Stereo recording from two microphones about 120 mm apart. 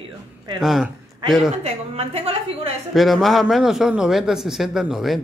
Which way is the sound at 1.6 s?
60° right (ahead or behind).